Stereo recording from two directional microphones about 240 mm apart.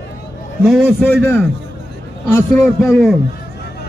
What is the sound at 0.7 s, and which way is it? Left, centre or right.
A man's voice, centre.